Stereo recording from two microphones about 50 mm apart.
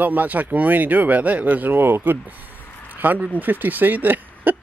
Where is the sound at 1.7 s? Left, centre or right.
Right.